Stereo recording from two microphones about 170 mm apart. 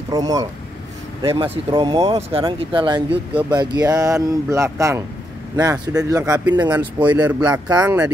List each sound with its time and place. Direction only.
0.1 s speech: 20° right (ahead or behind)
6.6 s speech: 10° right (ahead or behind)